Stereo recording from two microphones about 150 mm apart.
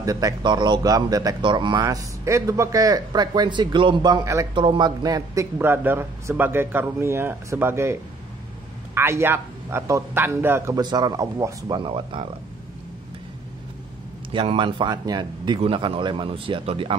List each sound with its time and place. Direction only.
0.0 s speech: 25° right (ahead or behind)
4.6 s speech: 30° right (ahead or behind); by 10.8 s 15° right (ahead or behind)
10.8 s speech: 25° right (ahead or behind)
11.8 s speech: 35° right (ahead or behind)
14.3 s speech: 35° right (ahead or behind)